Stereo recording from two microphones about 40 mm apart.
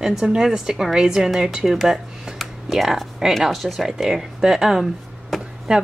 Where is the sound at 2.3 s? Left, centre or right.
Centre.